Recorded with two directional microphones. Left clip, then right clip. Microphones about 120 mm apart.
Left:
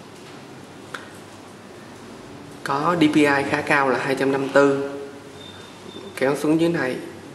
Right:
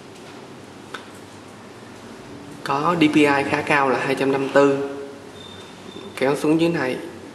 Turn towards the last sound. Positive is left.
turn(degrees=0)  # may be behind; listen again after turning